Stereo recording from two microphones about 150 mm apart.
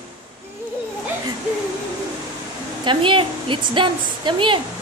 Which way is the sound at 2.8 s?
35° right (ahead or behind).